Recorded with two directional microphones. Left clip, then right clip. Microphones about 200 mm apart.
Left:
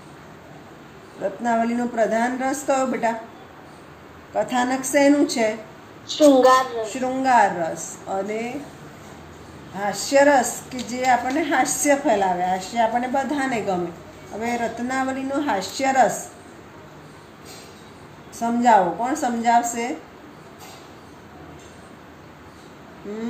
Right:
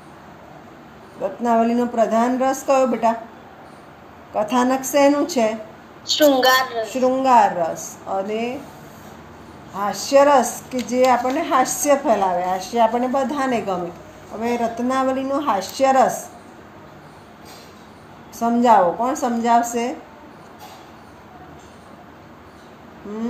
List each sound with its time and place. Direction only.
1.4 s a woman's voice: 20° right (ahead or behind)
4.4 s a woman's voice: 20° right (ahead or behind)
9.8 s a woman's voice: 15° right (ahead or behind)
18.4 s a woman's voice: 20° right (ahead or behind)